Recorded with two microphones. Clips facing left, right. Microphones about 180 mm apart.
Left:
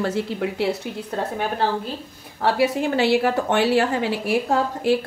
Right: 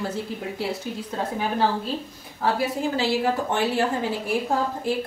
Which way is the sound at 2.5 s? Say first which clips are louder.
Left 5 dB; 75° left (ahead or behind).